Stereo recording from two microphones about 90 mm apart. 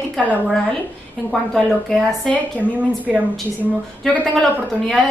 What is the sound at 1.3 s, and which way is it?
A woman's voice, 5° left (ahead or behind).